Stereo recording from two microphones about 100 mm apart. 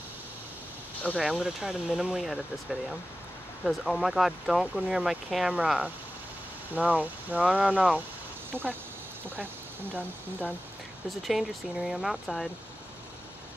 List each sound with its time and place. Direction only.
1.1 s speech: 5° right (ahead or behind)
8.5 s speech: 20° right (ahead or behind)
11.1 s speech: centre (ahead or behind)